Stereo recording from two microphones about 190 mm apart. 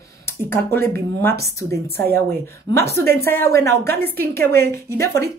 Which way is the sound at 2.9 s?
55° right (ahead or behind).